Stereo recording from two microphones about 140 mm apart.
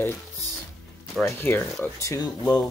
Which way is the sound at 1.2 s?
5° left (ahead or behind).